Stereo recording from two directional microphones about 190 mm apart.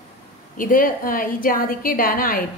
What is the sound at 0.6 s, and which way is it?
A woman's voice, 45° left (ahead or behind).